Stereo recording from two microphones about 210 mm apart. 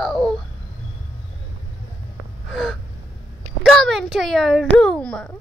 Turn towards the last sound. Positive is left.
turn(degrees=5)  # may be behind; listen again after turning